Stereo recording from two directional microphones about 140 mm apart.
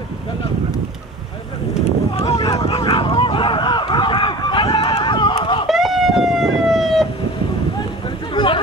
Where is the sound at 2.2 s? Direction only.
35° left (ahead or behind).